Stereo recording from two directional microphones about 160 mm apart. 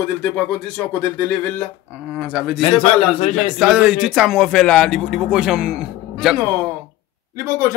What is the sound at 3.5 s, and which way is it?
A man's voice, 5° right (ahead or behind).